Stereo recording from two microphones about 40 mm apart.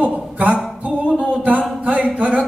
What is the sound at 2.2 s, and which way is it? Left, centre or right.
Speech, right.